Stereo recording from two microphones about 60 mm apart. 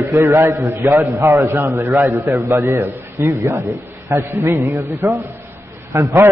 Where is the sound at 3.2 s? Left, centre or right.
Right.